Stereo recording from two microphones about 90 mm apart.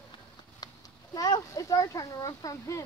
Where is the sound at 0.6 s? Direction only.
45° left (ahead or behind).